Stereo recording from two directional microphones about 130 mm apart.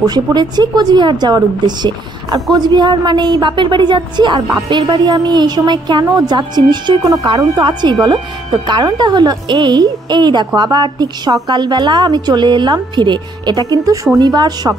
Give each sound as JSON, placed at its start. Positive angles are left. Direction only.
{"t": 0.0, "sound": "a woman's voice", "side_deg": -35}